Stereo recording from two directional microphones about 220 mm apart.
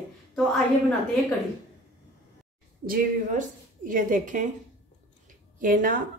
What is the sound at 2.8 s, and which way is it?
Speech, 35° right (ahead or behind).